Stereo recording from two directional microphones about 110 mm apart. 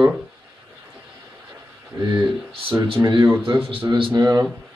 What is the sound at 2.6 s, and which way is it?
Speech, 50° right (ahead or behind).